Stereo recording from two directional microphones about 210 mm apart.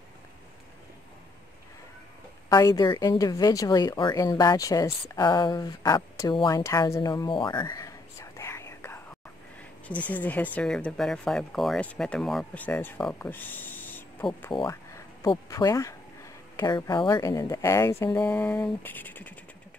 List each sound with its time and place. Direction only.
2.5 s a woman's voice: 20° left (ahead or behind)
14.5 s a woman's voice: 20° left (ahead or behind)